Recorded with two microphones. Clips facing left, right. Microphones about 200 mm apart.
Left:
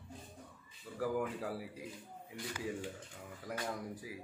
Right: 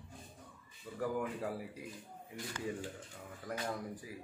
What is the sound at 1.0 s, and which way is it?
Speech, centre (ahead or behind).